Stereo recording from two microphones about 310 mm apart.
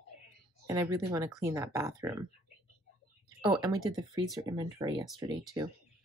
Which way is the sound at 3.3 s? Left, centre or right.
Centre.